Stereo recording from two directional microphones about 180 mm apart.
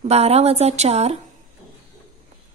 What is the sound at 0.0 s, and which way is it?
Speech, 35° right (ahead or behind).